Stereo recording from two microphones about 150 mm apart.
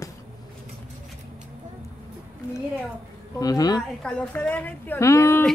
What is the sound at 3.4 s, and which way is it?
Speech, 25° left (ahead or behind).